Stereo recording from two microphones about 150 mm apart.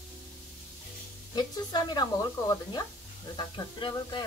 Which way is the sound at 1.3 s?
30° left (ahead or behind).